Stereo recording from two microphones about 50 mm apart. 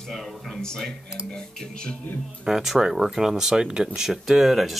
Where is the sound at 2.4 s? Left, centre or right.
Centre.